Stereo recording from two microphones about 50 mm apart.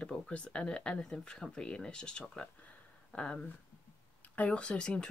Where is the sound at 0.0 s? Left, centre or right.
Left.